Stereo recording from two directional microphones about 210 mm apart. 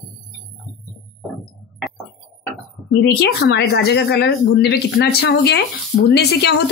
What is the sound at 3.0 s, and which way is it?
Speech, 50° left (ahead or behind).